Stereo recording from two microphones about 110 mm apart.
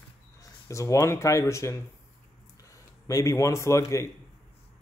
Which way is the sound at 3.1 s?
30° left (ahead or behind).